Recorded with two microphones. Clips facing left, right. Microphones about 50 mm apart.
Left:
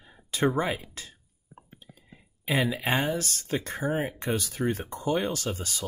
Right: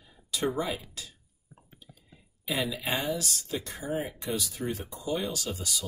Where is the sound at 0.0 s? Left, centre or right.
Left.